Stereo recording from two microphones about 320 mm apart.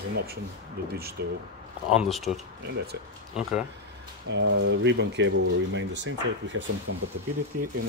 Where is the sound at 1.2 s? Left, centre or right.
Right.